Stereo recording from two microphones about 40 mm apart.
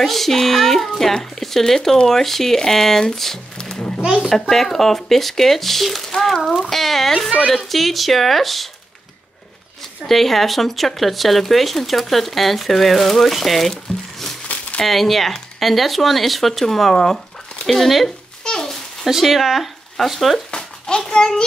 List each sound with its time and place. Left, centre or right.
0.0 s speech: centre
3.5 s music: centre
4.0 s a child's voice: centre
4.3 s speech: centre
10.0 s speech: centre
14.8 s speech: centre
18.4 s a child's voice: centre
19.0 s speech: centre
20.5 s a child's voice: centre